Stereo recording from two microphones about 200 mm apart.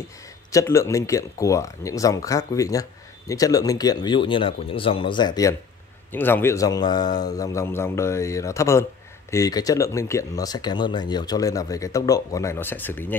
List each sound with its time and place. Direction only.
0.5 s speech: 15° left (ahead or behind)